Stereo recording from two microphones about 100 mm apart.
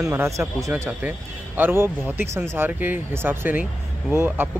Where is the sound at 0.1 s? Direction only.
25° right (ahead or behind).